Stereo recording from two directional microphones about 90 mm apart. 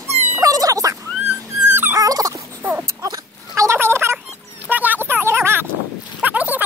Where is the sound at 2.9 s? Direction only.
40° right (ahead or behind).